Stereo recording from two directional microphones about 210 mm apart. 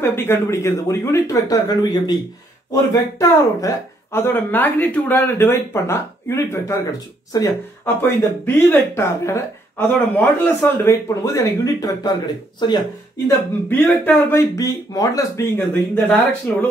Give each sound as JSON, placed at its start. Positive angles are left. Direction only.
{"t": 0.0, "sound": "speech", "side_deg": 10}
{"t": 13.7, "sound": "speech", "side_deg": 10}